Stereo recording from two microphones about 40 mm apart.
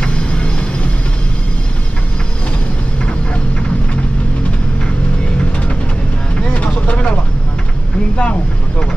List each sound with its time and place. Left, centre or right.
0.0 s vehicle: left
6.5 s vehicle: left
8.2 s vehicle: left